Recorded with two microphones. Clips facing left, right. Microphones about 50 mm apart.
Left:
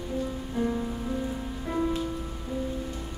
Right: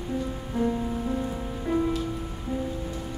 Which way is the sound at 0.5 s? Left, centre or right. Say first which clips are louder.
Right 3 dB; centre.